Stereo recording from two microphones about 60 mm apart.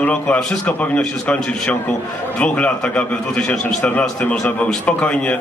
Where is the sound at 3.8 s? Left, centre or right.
Left.